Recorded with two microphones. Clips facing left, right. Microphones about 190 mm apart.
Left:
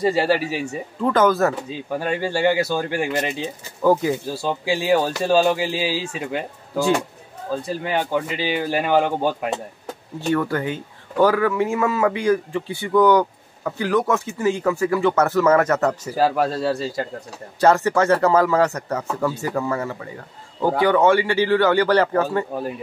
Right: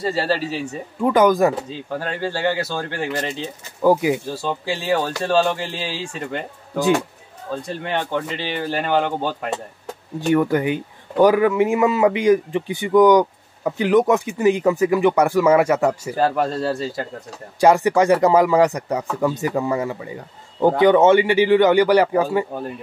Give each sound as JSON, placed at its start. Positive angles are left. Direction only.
{"t": 0.0, "sound": "speech", "side_deg": 15}
{"t": 1.0, "sound": "speech", "side_deg": -15}
{"t": 1.7, "sound": "speech", "side_deg": 15}
{"t": 3.8, "sound": "speech", "side_deg": -10}
{"t": 4.3, "sound": "speech", "side_deg": 10}
{"t": 10.2, "sound": "speech", "side_deg": -15}
{"t": 16.2, "sound": "speech", "side_deg": 5}
{"t": 17.6, "sound": "speech", "side_deg": -15}